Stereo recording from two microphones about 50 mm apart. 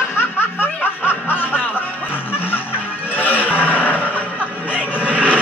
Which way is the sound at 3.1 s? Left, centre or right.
Left.